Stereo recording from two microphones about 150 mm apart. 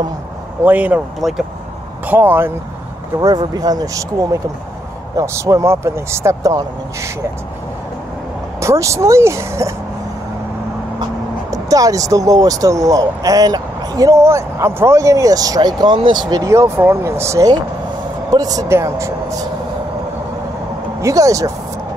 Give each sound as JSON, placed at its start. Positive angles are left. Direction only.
{"t": 0.7, "sound": "speech", "side_deg": -10}
{"t": 3.2, "sound": "speech", "side_deg": -25}
{"t": 8.5, "sound": "speech", "side_deg": -20}
{"t": 11.5, "sound": "speech", "side_deg": -25}
{"t": 21.0, "sound": "speech", "side_deg": -20}